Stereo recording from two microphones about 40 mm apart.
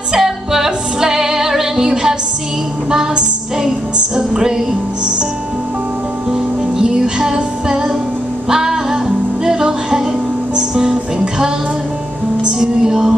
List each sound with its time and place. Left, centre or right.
0.1 s music: centre
2.9 s music: centre
6.8 s music: centre
12.5 s music: centre